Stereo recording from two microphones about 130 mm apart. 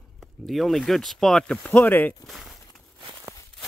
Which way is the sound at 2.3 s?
Centre (ahead or behind).